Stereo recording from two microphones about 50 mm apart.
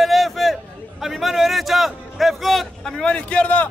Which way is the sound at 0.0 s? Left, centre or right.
Centre.